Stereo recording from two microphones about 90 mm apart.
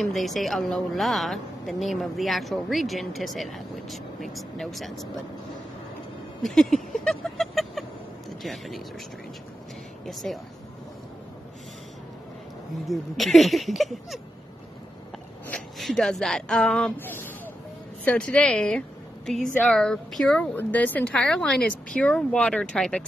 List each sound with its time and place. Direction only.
0.0 s a woman's voice: centre (ahead or behind)
6.4 s a sound: 5° left (ahead or behind)
8.4 s a woman's voice: centre (ahead or behind)
10.0 s a woman's voice: 5° left (ahead or behind)
12.8 s a woman's voice: centre (ahead or behind)
15.8 s a woman's voice: 5° left (ahead or behind)
16.9 s speech: 25° left (ahead or behind)
18.0 s a woman's voice: 15° left (ahead or behind)
20.5 s speech: 20° left (ahead or behind)